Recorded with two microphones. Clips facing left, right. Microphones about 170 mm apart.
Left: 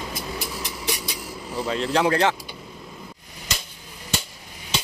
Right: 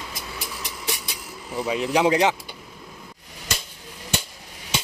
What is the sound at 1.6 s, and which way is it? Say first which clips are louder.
Speech: right 1 dB; 10° right (ahead or behind).